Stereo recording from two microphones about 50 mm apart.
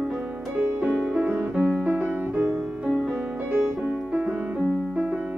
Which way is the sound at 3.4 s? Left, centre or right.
Right.